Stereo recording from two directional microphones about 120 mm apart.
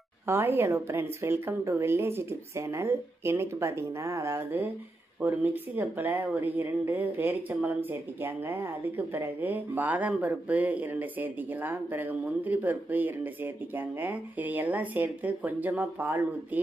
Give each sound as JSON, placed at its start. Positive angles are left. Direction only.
{"t": 0.3, "sound": "a woman's voice", "side_deg": -20}